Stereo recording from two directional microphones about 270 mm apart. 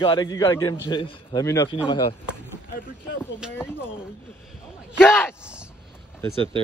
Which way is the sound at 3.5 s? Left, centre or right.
Centre.